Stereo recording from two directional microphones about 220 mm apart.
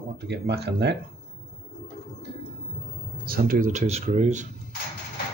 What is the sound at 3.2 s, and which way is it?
Speech, 40° right (ahead or behind).